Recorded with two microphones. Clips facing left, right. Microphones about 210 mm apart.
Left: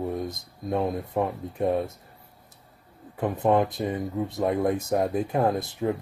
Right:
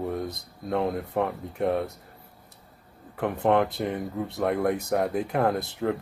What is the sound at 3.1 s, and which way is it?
Speech, 20° left (ahead or behind).